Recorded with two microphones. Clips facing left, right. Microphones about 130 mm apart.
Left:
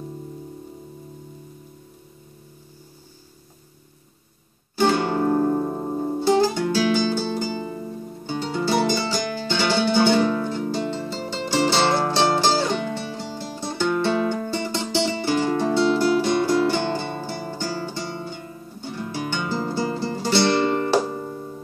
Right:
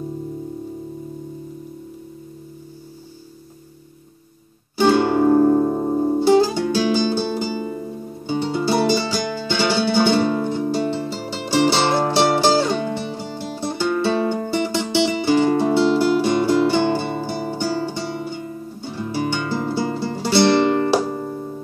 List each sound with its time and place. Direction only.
4.7 s music: 20° right (ahead or behind)
5.5 s music: 30° right (ahead or behind); by 20.4 s 10° right (ahead or behind)
21.1 s music: 40° right (ahead or behind)